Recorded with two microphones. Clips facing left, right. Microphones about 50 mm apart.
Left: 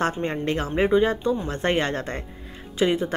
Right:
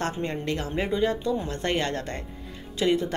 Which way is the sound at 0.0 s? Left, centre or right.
Left.